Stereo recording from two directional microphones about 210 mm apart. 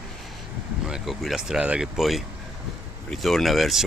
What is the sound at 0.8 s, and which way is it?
Speech, centre (ahead or behind).